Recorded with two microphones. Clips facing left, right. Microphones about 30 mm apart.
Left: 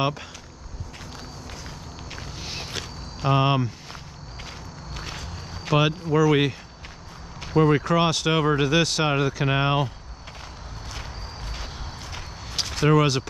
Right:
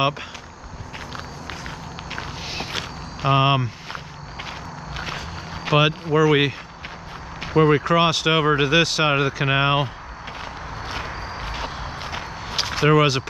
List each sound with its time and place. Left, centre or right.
0.0 s speech: centre
2.0 s walk: right
7.3 s speech: right
10.4 s vehicle: right
11.5 s walk: right